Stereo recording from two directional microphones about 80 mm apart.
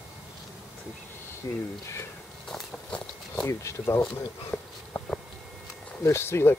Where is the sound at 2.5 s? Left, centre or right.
Centre.